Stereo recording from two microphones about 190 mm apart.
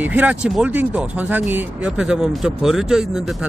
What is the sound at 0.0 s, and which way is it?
Speech, 10° right (ahead or behind).